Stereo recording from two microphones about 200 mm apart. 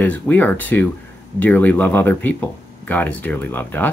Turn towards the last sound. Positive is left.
turn(degrees=10)  # may be behind; listen again after turning